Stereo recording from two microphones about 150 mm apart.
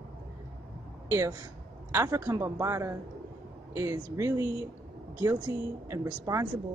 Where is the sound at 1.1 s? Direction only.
20° right (ahead or behind).